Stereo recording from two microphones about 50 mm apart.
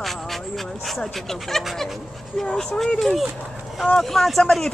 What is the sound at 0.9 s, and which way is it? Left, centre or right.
Speech, centre.